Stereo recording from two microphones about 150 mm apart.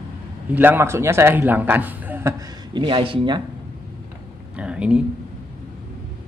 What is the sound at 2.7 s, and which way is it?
Speech, 35° right (ahead or behind).